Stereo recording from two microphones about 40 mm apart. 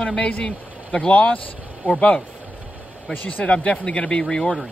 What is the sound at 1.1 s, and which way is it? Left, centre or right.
Speech, left.